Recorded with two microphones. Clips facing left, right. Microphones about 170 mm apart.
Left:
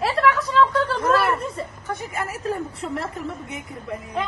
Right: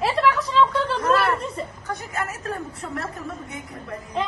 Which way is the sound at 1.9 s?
25° left (ahead or behind).